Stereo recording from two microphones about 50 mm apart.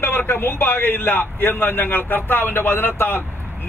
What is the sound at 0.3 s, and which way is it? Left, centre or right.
A man's voice, left.